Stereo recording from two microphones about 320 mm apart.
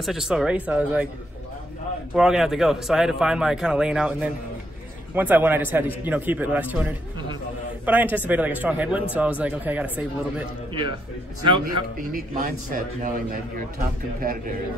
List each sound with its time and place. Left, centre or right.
0.0 s a man's voice: centre
2.1 s a man's voice: centre
10.7 s a man's voice: centre